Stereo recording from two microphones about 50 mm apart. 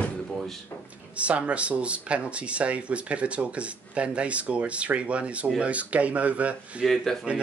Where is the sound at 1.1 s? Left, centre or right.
Right.